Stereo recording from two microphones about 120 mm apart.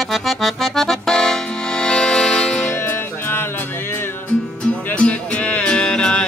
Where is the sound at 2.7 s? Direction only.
20° left (ahead or behind).